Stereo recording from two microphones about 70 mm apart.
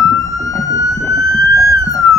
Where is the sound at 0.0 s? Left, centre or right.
Left.